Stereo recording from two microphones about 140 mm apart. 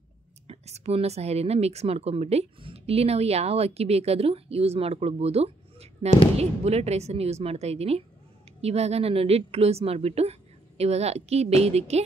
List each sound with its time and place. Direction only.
0.5 s speech: 50° right (ahead or behind)